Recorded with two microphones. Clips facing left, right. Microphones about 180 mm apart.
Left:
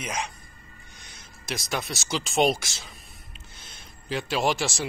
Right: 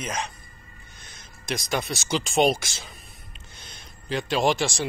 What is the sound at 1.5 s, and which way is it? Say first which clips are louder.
Speech: right 3 dB; centre (ahead or behind).